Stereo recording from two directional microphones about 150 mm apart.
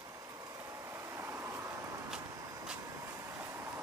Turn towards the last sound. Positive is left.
turn(degrees=-15)  # may be behind; listen again after turning